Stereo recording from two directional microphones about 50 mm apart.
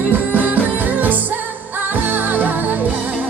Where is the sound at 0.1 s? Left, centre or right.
Right.